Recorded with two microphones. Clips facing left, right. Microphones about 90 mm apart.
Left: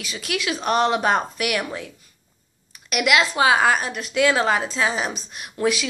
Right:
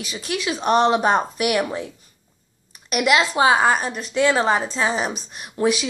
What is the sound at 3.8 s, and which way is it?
A woman's voice, centre (ahead or behind).